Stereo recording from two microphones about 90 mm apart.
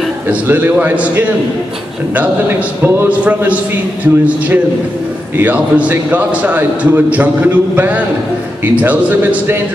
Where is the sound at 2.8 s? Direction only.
15° right (ahead or behind).